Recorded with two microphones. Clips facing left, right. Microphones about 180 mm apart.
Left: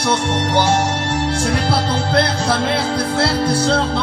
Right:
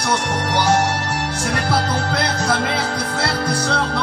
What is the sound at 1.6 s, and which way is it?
Music, 30° left (ahead or behind).